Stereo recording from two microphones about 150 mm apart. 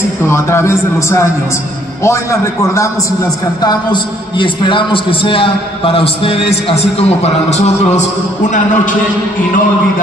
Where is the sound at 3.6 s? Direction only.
30° left (ahead or behind); by 8.0 s 50° left (ahead or behind).